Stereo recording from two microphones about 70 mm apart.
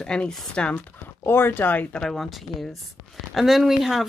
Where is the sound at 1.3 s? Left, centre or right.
Left.